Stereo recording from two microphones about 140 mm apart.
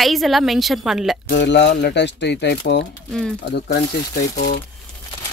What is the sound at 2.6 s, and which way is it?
Speech, 90° left.